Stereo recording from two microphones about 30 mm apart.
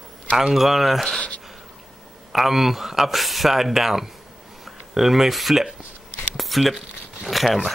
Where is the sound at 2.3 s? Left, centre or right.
Centre.